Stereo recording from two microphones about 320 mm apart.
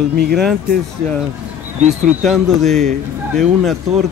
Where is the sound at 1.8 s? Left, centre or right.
Right.